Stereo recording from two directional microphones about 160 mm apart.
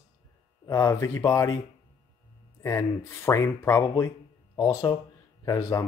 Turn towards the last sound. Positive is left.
turn(degrees=20)  # may be behind; listen again after turning